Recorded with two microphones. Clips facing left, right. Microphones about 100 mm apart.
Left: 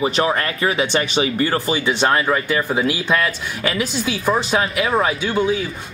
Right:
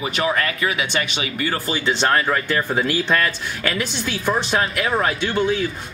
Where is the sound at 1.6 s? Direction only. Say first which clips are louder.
Left 2 dB; 15° left (ahead or behind).